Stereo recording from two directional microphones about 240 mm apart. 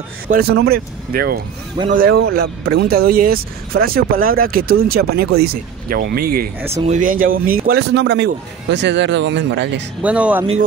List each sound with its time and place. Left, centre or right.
0.3 s speech: right
2.6 s speech: right
2.9 s a man's voice: right
10.0 s speech: centre